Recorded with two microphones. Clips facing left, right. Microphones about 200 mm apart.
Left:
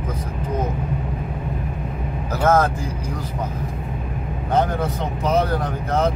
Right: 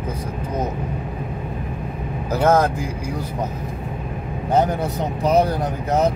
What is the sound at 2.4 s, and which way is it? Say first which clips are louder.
Speech: right 1 dB; 15° right (ahead or behind).